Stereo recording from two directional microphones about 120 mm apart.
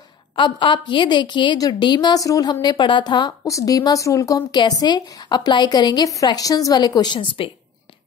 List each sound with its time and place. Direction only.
0.4 s a woman's voice: 40° left (ahead or behind)